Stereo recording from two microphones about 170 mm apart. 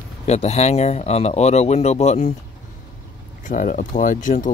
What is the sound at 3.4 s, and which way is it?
Speech, 50° left (ahead or behind).